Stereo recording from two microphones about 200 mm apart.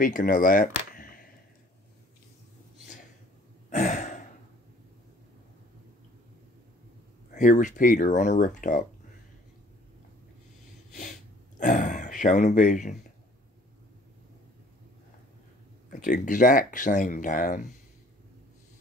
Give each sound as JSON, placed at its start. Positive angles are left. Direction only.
{"t": 0.0, "sound": "speech", "side_deg": 45}
{"t": 3.7, "sound": "sigh", "side_deg": 35}
{"t": 7.3, "sound": "speech", "side_deg": 35}
{"t": 11.0, "sound": "a sound", "side_deg": 40}
{"t": 15.9, "sound": "speech", "side_deg": 40}